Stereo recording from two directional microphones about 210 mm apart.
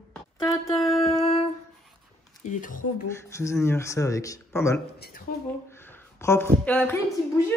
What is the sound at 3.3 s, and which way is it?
Speech, 15° left (ahead or behind).